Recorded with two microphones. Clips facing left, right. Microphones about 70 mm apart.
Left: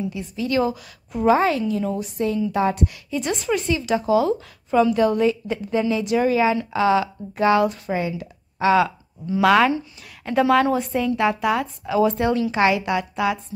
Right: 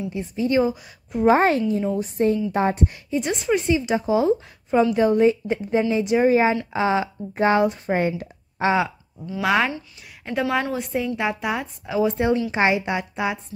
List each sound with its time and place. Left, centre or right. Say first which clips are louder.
0.1 s a woman's voice: right 2 dB; right
1.2 s a woman's voice: right 1 dB; right
7.9 s speech: right 2 dB; right
8.6 s a woman's voice: left 3 dB; centre